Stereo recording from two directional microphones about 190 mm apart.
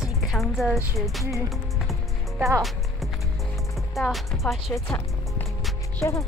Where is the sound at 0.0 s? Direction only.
Centre (ahead or behind).